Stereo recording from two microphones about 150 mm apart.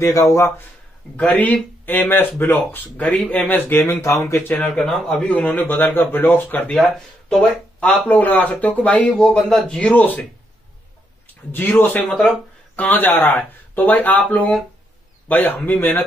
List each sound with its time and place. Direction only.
0.0 s a man's voice: 20° left (ahead or behind)
4.6 s a man's voice: 5° left (ahead or behind)
11.5 s a man's voice: 10° left (ahead or behind)